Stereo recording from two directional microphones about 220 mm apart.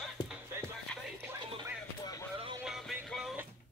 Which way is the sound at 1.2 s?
10° right (ahead or behind).